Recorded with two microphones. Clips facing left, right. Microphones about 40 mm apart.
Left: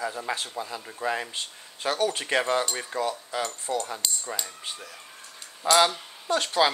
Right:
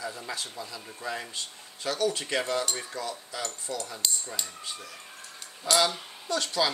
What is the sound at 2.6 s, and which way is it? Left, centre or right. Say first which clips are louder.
Cutlery: left 2 dB; left.